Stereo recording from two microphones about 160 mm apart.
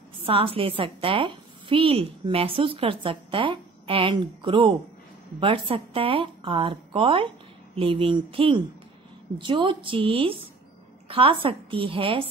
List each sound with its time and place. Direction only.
0.2 s a woman's voice: 35° right (ahead or behind)